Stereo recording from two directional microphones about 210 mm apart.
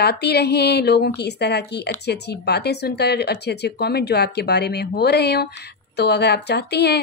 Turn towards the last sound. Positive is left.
turn(degrees=50)  # may be behind; listen again after turning